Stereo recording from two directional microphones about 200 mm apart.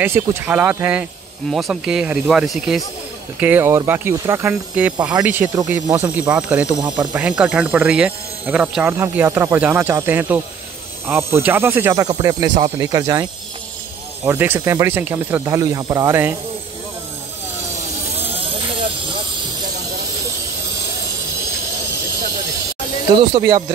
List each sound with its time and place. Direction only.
0.0 s speech: 10° right (ahead or behind)
18.3 s snake: 30° right (ahead or behind)
23.1 s speech: 20° right (ahead or behind)